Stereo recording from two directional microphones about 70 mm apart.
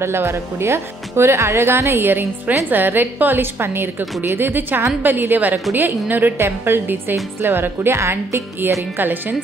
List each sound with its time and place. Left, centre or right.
0.0 s speech: right